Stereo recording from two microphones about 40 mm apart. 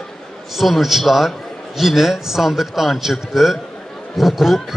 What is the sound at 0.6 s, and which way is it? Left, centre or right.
A man's voice, centre.